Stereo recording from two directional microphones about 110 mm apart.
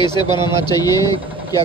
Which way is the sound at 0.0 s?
40° left (ahead or behind).